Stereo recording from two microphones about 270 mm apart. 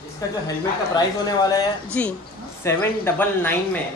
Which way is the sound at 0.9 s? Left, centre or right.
Centre.